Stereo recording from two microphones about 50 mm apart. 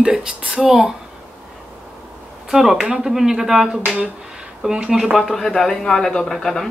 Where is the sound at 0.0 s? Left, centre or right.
Centre.